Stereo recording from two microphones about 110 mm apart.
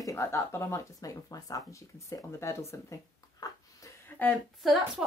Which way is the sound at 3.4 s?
35° left (ahead or behind).